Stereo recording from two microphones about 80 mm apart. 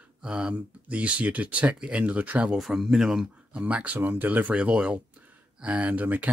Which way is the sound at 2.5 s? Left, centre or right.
Centre.